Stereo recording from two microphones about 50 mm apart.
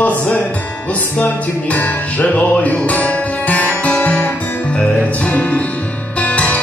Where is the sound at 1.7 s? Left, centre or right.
Left.